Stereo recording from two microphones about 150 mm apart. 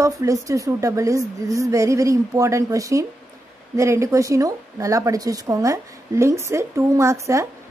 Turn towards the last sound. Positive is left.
turn(degrees=-20)  # may be behind; listen again after turning